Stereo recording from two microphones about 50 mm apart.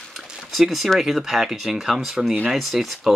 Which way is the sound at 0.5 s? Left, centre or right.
Centre.